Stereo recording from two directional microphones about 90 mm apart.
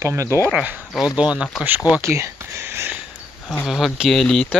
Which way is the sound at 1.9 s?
35° right (ahead or behind).